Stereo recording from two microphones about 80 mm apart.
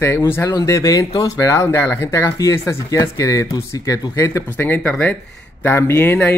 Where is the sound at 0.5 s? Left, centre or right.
Left.